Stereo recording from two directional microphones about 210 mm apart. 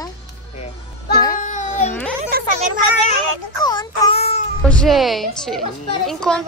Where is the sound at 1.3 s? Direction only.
35° left (ahead or behind).